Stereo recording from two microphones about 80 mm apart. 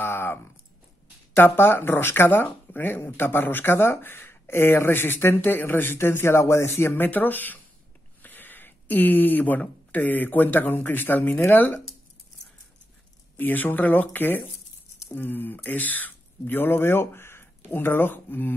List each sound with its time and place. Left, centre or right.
0.0 s a sound: left
1.3 s speech: left
13.4 s speech: left